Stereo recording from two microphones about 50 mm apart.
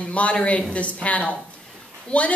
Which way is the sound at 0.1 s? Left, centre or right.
Left.